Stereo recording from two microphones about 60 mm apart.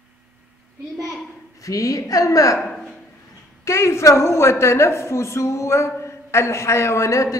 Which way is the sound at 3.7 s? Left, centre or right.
Left.